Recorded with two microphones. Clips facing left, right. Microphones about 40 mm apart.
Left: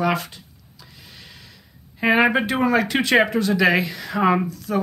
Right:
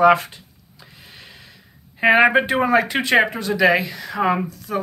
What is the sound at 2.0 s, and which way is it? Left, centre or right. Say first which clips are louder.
Speech: right 3 dB; centre.